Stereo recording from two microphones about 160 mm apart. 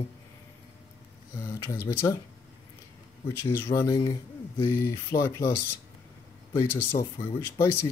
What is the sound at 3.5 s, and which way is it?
Speech, 20° left (ahead or behind).